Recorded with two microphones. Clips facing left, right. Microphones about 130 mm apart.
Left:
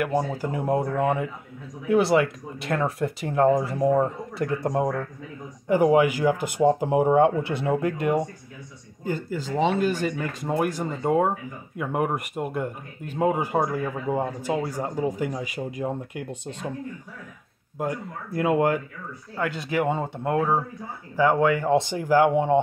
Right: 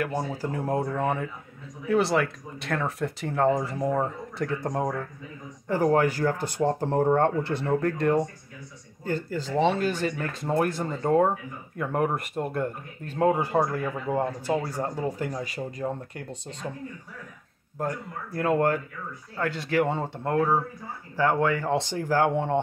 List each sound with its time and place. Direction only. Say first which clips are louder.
0.3 s speech: left 3 dB; 15° left (ahead or behind)
17.7 s speech: left 2 dB; 15° left (ahead or behind)